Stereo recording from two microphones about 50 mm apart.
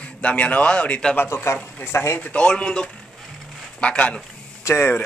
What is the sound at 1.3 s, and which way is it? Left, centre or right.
Speech, left.